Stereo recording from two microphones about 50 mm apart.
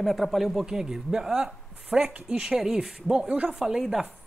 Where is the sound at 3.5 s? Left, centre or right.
Centre.